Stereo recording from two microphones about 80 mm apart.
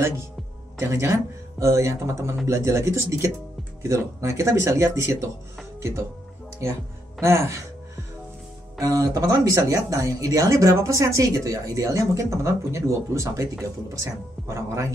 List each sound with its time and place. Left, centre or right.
0.7 s speech: right
8.7 s speech: right